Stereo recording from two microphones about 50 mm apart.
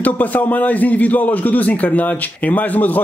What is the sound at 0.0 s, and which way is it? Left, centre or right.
A man's voice, left.